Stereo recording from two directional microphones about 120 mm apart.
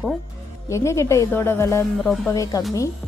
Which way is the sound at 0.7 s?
25° left (ahead or behind).